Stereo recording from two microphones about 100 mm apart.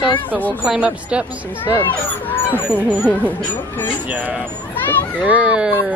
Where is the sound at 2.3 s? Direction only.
20° left (ahead or behind).